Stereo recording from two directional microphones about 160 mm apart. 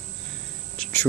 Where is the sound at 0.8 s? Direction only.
10° left (ahead or behind).